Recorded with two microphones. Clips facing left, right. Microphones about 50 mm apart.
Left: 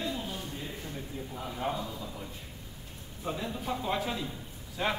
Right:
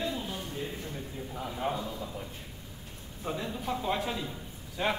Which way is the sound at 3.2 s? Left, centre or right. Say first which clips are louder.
Even; centre.